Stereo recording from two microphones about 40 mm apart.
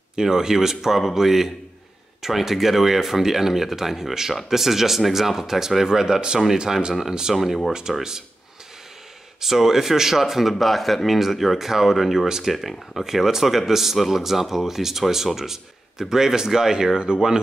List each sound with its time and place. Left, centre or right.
0.1 s speech: centre
7.3 s speech: centre
9.4 s speech: centre
12.3 s speech: centre
12.5 s speech: centre